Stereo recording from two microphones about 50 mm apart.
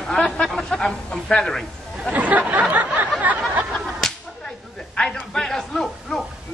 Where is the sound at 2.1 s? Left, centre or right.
Right.